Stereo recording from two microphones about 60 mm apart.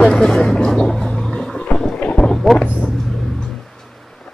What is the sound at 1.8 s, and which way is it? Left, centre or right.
Wind noise, centre.